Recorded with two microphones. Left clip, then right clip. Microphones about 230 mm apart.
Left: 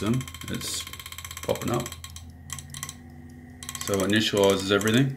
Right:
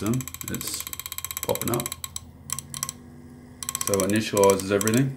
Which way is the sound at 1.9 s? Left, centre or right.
Right.